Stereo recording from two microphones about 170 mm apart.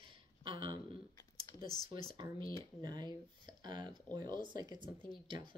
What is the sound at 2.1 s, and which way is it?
Speech, 25° right (ahead or behind).